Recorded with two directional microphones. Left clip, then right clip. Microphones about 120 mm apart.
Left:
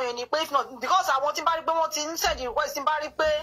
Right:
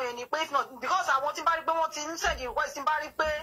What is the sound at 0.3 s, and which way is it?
Speech, 25° left (ahead or behind).